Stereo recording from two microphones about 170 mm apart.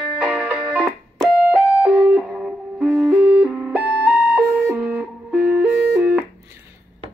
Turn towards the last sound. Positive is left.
turn(degrees=-10)  # may be behind; listen again after turning